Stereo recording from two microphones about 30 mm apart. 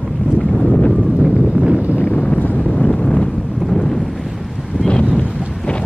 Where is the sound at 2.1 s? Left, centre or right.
Left.